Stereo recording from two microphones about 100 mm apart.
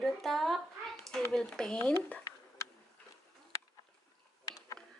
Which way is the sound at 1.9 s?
25° left (ahead or behind).